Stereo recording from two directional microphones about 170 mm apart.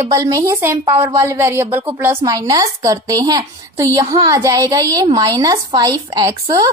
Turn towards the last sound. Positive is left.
turn(degrees=-20)  # may be behind; listen again after turning